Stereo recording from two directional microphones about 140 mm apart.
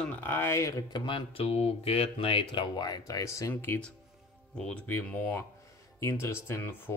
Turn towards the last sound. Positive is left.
turn(degrees=15)  # may be behind; listen again after turning